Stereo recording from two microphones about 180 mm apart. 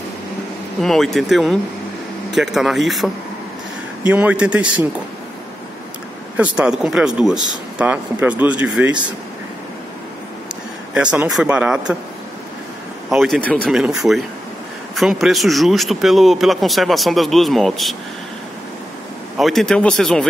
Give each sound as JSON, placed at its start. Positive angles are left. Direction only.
{"t": 0.7, "sound": "speech", "side_deg": 0}
{"t": 6.3, "sound": "speech", "side_deg": -5}
{"t": 11.0, "sound": "speech", "side_deg": -5}
{"t": 13.1, "sound": "speech", "side_deg": 0}
{"t": 19.3, "sound": "speech", "side_deg": 0}